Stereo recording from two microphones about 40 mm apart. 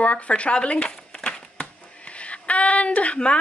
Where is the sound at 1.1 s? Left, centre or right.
Left.